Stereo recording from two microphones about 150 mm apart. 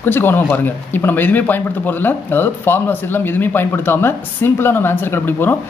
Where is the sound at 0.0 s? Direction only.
15° left (ahead or behind).